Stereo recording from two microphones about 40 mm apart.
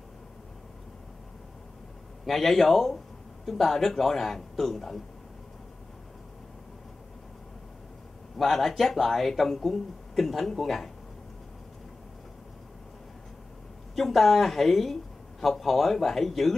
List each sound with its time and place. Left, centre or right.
2.2 s a man's voice: centre
8.4 s speech: centre
13.9 s speech: centre